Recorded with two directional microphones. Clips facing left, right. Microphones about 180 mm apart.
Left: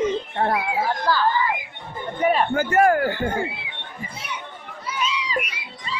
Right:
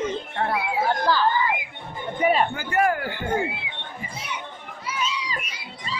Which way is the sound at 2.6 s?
45° left (ahead or behind).